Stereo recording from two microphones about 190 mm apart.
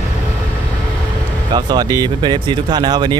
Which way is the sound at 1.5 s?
20° right (ahead or behind).